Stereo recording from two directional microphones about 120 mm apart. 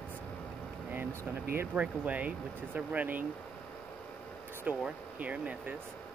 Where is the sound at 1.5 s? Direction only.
15° right (ahead or behind).